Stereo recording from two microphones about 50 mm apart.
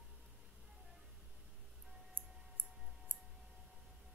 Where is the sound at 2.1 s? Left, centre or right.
Right.